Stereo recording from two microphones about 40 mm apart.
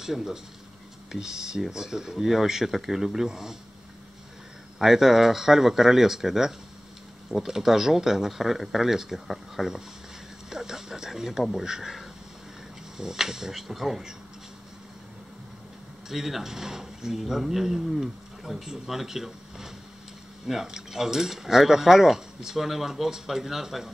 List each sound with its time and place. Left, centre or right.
0.0 s speech: centre
4.7 s speech: centre
16.1 s speech: centre